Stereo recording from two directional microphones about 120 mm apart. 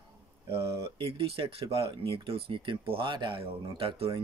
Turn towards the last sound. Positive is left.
turn(degrees=-45)  # may be behind; listen again after turning